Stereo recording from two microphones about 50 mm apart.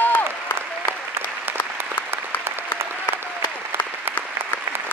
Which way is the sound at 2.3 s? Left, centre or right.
Left.